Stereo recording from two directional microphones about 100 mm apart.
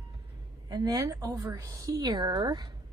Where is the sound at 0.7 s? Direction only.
40° right (ahead or behind).